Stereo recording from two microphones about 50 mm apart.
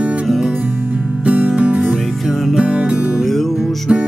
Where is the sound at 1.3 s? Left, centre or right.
Right.